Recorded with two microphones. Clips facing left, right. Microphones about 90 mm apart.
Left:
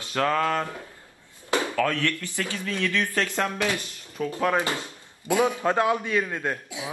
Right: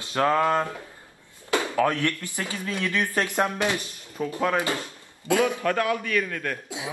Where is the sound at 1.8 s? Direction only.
20° right (ahead or behind).